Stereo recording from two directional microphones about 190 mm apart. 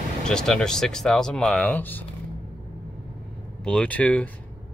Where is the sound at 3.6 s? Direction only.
5° left (ahead or behind).